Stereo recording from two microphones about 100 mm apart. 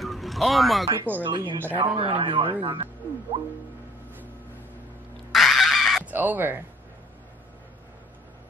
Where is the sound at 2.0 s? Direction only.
65° right (ahead or behind).